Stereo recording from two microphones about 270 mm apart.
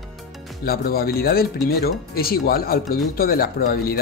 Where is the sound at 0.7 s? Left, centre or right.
Left.